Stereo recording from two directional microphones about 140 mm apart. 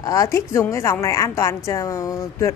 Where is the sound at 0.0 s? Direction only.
25° left (ahead or behind).